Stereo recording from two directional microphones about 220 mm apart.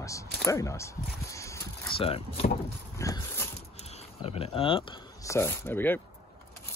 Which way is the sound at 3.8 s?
30° left (ahead or behind).